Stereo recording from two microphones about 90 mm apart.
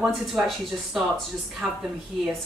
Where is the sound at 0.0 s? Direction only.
5° right (ahead or behind).